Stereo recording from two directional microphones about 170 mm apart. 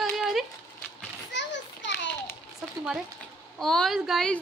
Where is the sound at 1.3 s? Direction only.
90° left.